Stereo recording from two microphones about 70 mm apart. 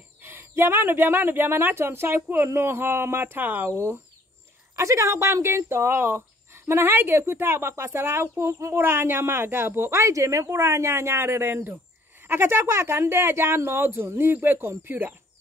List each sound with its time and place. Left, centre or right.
0.2 s speech: right
3.7 s a woman's voice: right